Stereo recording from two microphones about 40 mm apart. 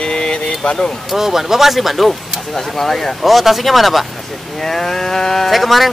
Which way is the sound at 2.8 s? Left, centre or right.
Centre.